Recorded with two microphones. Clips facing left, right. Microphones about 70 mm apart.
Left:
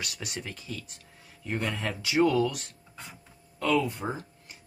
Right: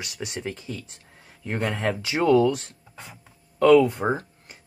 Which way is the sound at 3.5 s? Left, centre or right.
Right.